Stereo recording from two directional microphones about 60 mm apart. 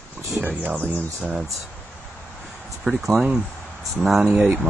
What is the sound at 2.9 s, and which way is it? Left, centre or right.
Speech, centre.